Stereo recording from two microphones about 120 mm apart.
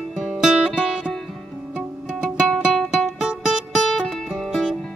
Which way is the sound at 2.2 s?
Centre (ahead or behind).